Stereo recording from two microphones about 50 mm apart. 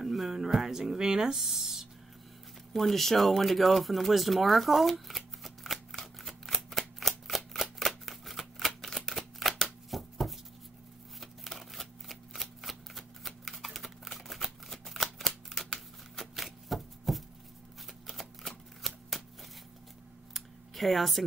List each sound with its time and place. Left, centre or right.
0.0 s speech: centre
2.7 s speech: centre
5.9 s shuffling cards: centre
9.8 s a sound: centre
11.1 s shuffling cards: centre
20.3 s computer keyboard: centre